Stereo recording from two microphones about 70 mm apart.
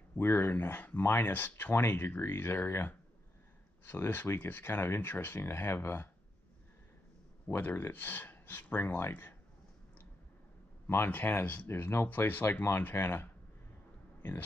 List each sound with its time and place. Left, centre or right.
0.2 s speech: left
7.5 s speech: left
11.1 s speech: left